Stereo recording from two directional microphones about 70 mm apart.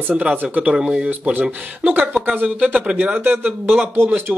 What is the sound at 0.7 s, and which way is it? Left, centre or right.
Speech, centre.